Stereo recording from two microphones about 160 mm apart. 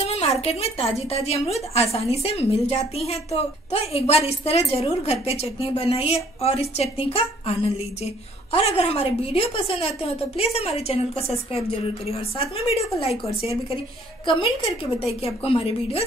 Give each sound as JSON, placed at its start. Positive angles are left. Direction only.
{"t": 0.0, "sound": "a woman's voice", "side_deg": 40}
{"t": 14.2, "sound": "a woman's voice", "side_deg": 30}